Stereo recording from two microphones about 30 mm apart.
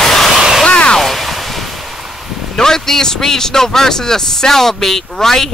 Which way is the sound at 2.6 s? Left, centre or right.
Centre.